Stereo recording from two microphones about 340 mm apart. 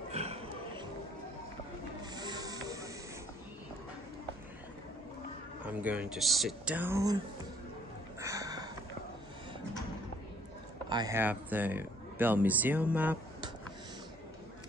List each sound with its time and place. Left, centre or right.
0.1 s music: centre
2.1 s music: centre
5.7 s speech: centre
8.2 s a sound: centre
10.9 s speech: centre